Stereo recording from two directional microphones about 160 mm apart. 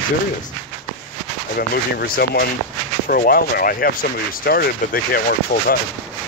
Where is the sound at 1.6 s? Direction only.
70° left (ahead or behind).